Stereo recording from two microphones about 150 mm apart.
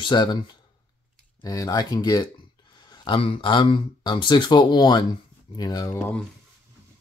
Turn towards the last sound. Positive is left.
turn(degrees=25)  # may be behind; listen again after turning